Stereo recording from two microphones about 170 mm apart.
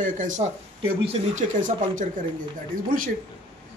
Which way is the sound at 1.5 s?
50° right (ahead or behind).